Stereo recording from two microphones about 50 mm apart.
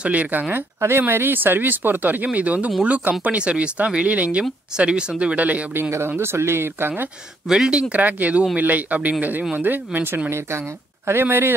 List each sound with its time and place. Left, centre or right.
0.1 s speech: right
0.7 s speech: right
5.9 s speech: right
7.4 s speech: centre
7.7 s speech: right
11.1 s speech: right